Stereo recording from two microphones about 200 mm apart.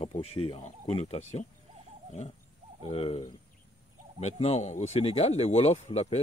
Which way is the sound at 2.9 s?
30° left (ahead or behind).